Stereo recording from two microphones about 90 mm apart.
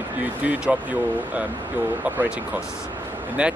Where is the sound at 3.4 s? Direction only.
10° right (ahead or behind).